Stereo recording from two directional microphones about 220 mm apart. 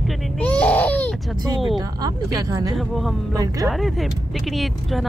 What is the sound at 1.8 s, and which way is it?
Speech, 15° right (ahead or behind).